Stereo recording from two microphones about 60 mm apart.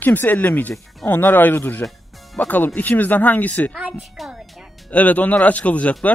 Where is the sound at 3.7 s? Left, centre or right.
Right.